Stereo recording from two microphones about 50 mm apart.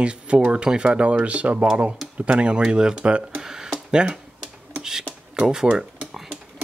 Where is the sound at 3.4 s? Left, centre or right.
Centre.